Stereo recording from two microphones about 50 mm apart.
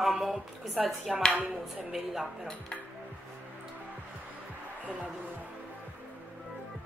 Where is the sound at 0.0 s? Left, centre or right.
Centre.